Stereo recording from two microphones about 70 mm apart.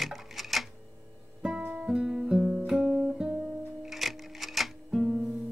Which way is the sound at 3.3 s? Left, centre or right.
Centre.